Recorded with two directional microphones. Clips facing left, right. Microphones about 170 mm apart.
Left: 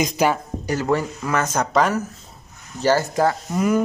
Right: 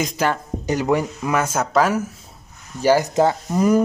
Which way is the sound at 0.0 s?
15° left (ahead or behind).